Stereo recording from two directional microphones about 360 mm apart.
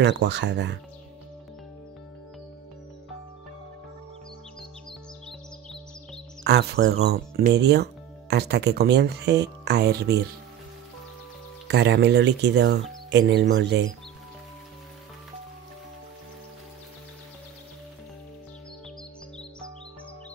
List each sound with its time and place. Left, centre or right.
0.0 s speech: right
6.4 s speech: right
11.6 s speech: right